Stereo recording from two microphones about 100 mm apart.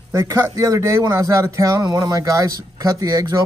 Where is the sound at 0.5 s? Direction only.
35° right (ahead or behind).